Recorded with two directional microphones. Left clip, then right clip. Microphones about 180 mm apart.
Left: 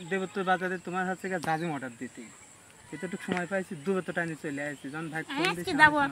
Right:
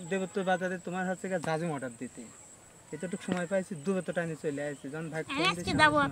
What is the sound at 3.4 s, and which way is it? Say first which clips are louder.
Speech: right 2 dB; 45° right (ahead or behind).